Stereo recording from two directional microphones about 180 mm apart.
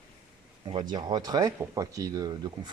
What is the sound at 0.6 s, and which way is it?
Speech, 25° right (ahead or behind).